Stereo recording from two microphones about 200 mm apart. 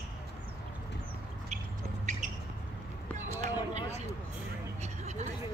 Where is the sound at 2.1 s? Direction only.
35° right (ahead or behind).